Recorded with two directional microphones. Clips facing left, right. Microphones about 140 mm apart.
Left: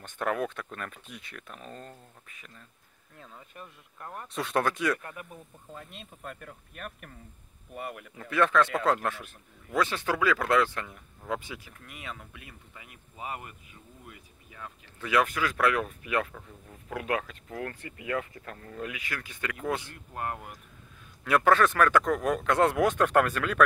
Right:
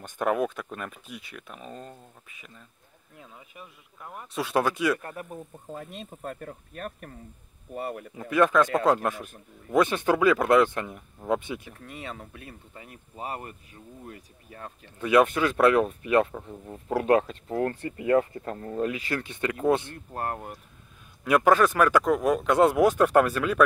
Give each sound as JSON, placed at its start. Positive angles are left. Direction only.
{"t": 0.0, "sound": "speech", "side_deg": -15}
{"t": 5.0, "sound": "speech", "side_deg": -40}
{"t": 8.2, "sound": "speech", "side_deg": -15}
{"t": 15.0, "sound": "speech", "side_deg": -25}
{"t": 20.1, "sound": "speech", "side_deg": -35}
{"t": 21.2, "sound": "speech", "side_deg": -15}